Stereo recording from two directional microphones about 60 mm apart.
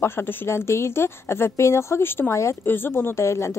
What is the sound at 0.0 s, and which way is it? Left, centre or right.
Speech, left.